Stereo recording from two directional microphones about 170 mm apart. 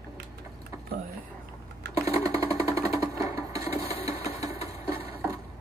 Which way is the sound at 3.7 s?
35° left (ahead or behind).